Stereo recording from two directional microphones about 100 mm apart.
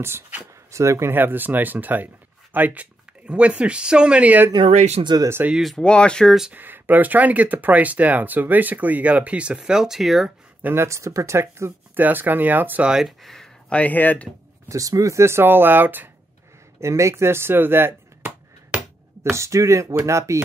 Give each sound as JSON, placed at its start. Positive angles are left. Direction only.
{"t": 0.0, "sound": "speech", "side_deg": -25}
{"t": 5.0, "sound": "speech", "side_deg": -45}
{"t": 5.5, "sound": "speech", "side_deg": 0}
{"t": 6.5, "sound": "speech", "side_deg": -20}
{"t": 10.6, "sound": "speech", "side_deg": -25}
{"t": 14.7, "sound": "speech", "side_deg": -35}
{"t": 16.8, "sound": "speech", "side_deg": -30}